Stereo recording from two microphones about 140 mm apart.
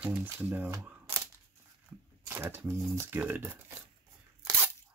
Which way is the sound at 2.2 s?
15° right (ahead or behind).